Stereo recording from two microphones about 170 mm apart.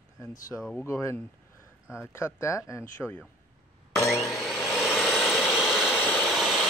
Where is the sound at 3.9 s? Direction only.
Centre (ahead or behind).